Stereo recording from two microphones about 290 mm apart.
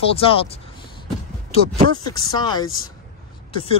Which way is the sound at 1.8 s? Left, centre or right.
Centre.